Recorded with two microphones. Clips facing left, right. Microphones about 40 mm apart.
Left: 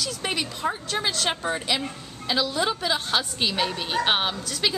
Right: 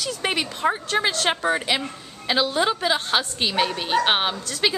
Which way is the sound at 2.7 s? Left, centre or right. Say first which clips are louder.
Right 3 dB; centre.